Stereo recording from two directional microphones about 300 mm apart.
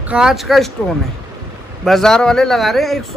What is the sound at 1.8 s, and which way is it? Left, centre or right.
A man's voice, centre.